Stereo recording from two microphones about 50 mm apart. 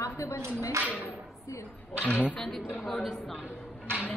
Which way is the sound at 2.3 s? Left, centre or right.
Centre.